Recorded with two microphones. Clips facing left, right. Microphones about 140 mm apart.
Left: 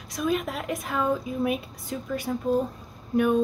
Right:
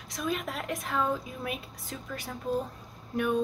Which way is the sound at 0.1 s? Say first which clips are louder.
Left 6 dB; 5° left (ahead or behind).